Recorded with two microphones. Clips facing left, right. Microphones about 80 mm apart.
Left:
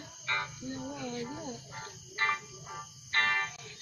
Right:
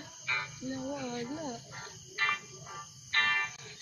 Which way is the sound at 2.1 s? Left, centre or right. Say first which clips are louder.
Left 2 dB; left.